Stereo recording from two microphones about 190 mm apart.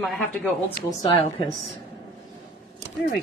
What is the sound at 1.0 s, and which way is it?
Speech, 30° left (ahead or behind).